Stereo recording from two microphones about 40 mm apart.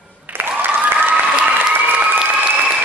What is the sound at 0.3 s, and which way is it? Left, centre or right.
Applause, right.